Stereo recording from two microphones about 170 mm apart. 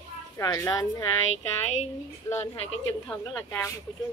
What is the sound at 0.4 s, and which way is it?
Speech, 20° left (ahead or behind).